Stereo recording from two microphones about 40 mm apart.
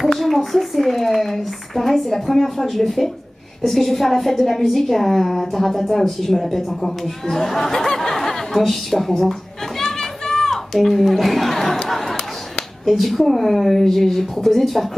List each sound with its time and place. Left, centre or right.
0.2 s a woman's voice: centre
9.9 s a sound: centre
12.8 s a woman's voice: centre